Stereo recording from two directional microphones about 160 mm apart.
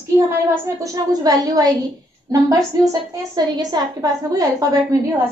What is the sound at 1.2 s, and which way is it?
A woman's voice, 25° right (ahead or behind).